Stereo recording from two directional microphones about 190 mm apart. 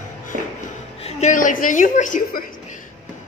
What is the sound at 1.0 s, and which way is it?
A woman's voice, 40° left (ahead or behind).